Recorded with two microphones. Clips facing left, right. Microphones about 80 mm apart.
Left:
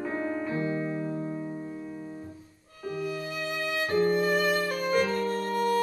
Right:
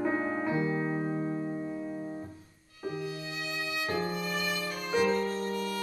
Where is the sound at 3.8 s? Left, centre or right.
Left.